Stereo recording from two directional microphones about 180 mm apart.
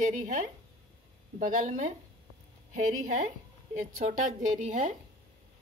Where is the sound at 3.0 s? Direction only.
45° right (ahead or behind).